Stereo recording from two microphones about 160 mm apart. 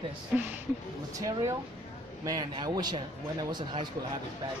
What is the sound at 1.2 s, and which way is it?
A man's voice, 20° right (ahead or behind).